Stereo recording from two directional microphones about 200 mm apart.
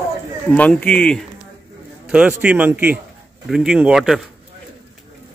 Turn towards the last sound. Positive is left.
turn(degrees=0)  # may be behind; listen again after turning